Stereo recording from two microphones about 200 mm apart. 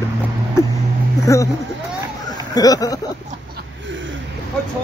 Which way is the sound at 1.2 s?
15° left (ahead or behind).